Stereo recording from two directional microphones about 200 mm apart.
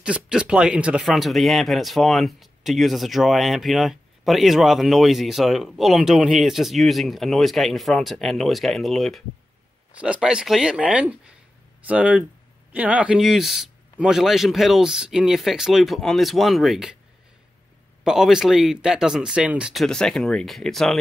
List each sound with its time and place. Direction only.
0.0 s speech: 5° right (ahead or behind)
18.0 s speech: centre (ahead or behind)